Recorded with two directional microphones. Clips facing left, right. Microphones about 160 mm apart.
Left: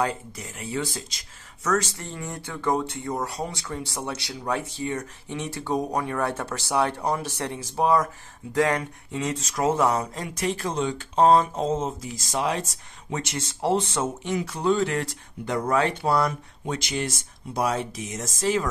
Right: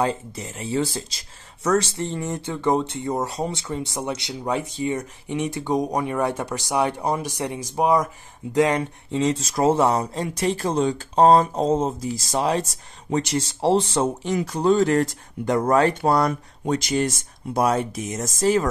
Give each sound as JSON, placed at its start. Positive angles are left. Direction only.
{"t": 0.0, "sound": "speech", "side_deg": -25}